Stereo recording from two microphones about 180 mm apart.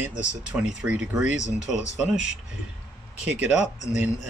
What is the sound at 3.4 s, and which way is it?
Speech, 5° right (ahead or behind).